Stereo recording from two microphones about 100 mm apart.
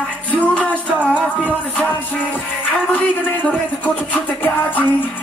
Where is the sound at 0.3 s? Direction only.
15° left (ahead or behind).